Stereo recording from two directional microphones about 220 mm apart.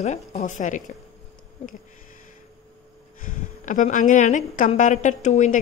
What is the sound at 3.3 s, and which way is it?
A woman's voice, 35° left (ahead or behind).